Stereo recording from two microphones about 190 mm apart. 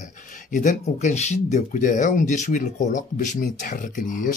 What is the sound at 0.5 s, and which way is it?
Speech, 40° left (ahead or behind).